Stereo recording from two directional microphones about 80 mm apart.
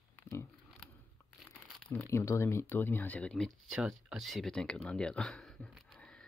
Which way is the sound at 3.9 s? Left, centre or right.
Centre.